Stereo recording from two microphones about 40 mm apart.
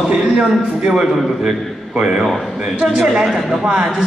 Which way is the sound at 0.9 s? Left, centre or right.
Centre.